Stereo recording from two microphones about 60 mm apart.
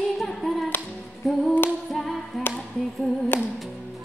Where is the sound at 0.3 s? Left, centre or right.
Centre.